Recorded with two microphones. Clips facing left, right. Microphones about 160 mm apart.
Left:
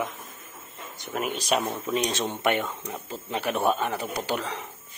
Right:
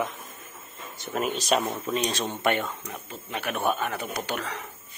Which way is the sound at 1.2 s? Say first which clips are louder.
Right 1 dB; 10° left (ahead or behind).